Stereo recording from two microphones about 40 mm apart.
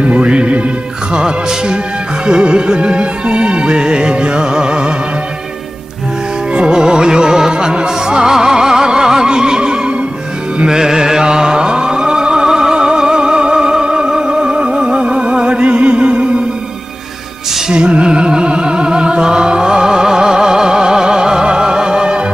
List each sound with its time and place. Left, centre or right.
0.0 s music: right
1.1 s speech: right
2.2 s music: right
6.5 s music: right
17.6 s music: right